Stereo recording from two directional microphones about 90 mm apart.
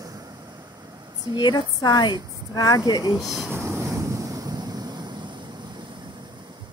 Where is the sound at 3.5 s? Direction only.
25° right (ahead or behind); by 5.0 s 50° right (ahead or behind).